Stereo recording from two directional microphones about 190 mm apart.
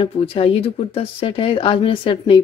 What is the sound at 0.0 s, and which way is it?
Speech, 30° left (ahead or behind).